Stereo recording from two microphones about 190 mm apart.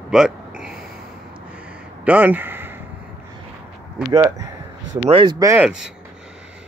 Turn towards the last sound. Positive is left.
turn(degrees=-5)  # may be behind; listen again after turning